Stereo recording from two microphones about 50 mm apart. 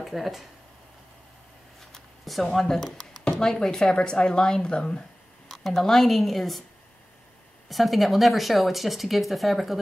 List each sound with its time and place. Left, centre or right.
0.0 s speech: centre
1.9 s a sound: centre
3.0 s speech: centre
5.5 s speech: centre
7.7 s speech: centre